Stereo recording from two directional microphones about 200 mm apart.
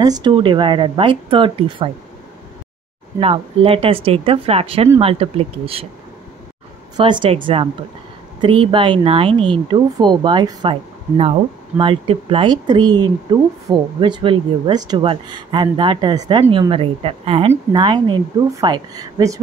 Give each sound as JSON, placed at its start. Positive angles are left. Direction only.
{"t": 0.0, "sound": "speech", "side_deg": -20}
{"t": 3.2, "sound": "speech", "side_deg": -30}
{"t": 7.0, "sound": "speech", "side_deg": -25}